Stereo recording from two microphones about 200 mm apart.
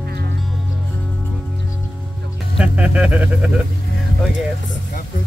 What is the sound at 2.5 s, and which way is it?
Music, 5° right (ahead or behind).